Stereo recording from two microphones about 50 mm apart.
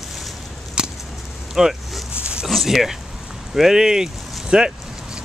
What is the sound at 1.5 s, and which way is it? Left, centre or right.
Speech, centre.